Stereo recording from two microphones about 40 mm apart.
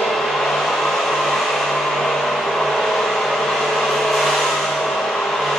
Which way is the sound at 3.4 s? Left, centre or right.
Centre.